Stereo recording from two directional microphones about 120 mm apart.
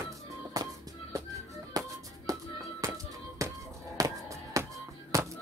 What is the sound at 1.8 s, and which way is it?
Music, 35° right (ahead or behind).